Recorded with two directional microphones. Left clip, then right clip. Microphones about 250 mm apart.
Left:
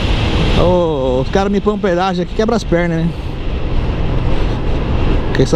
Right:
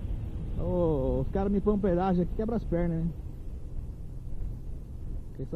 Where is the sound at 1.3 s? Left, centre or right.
Centre.